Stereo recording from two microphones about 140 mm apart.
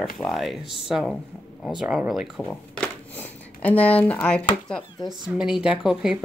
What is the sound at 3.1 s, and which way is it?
Speech, 10° left (ahead or behind).